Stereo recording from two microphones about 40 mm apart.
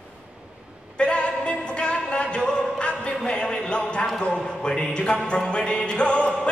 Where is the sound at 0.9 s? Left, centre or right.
Left.